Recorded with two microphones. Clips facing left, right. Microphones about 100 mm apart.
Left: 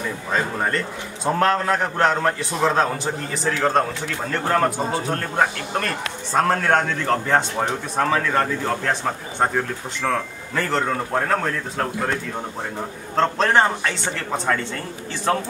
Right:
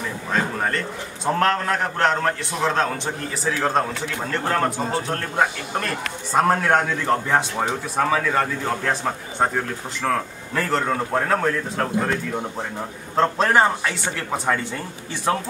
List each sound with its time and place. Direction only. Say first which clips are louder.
0.3 s speech: even; centre (ahead or behind)
13.1 s speech: even; 5° right (ahead or behind)